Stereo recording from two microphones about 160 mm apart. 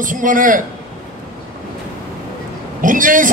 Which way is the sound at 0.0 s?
55° right (ahead or behind).